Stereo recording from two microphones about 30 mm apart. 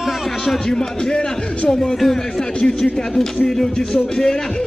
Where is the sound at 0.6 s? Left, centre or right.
Left.